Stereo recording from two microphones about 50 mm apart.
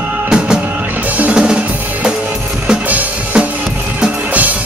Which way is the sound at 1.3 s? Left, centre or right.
Centre.